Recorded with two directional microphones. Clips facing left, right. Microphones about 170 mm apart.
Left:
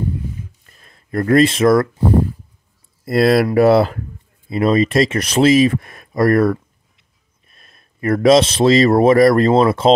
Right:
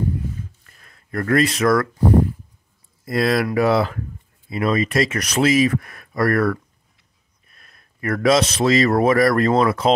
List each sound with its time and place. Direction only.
0.7 s speech: 25° left (ahead or behind)
3.1 s a man's voice: 35° left (ahead or behind)